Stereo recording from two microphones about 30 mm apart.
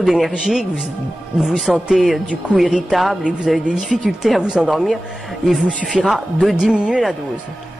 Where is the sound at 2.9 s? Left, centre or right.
Centre.